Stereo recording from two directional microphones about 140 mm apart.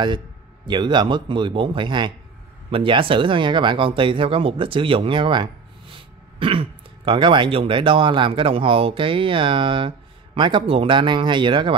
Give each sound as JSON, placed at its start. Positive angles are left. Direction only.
{"t": 0.7, "sound": "speech", "side_deg": -30}